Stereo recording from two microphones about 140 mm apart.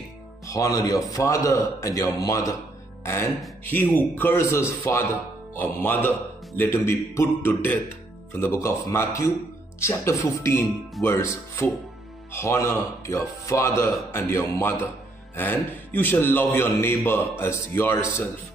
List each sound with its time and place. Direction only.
0.5 s a man's voice: 25° left (ahead or behind)
3.7 s a man's voice: 15° left (ahead or behind)